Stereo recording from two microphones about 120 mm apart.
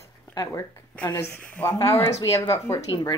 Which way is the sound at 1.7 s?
30° left (ahead or behind).